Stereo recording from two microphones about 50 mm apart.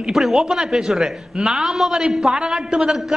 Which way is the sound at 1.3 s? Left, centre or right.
Centre.